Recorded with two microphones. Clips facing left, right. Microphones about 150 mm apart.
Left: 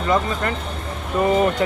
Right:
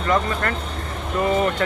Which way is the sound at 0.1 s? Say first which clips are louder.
Even; 15° left (ahead or behind).